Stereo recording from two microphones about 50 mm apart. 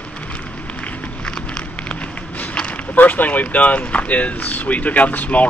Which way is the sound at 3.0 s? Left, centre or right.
Left.